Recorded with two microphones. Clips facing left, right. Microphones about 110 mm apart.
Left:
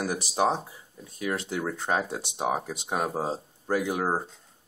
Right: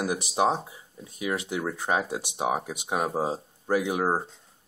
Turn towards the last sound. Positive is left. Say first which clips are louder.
# right 1 dB
turn(degrees=-5)  # may be behind; listen again after turning